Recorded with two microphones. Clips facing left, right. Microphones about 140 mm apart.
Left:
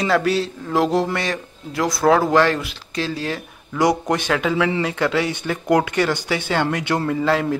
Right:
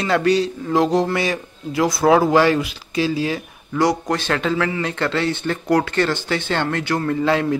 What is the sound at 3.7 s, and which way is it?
Speech, 20° left (ahead or behind).